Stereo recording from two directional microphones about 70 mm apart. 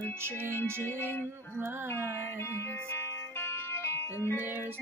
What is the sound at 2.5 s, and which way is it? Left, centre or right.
Music, left.